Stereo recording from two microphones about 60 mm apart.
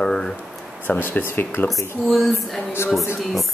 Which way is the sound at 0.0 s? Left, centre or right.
Centre.